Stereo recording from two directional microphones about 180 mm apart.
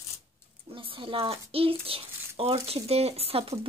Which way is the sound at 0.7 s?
30° right (ahead or behind).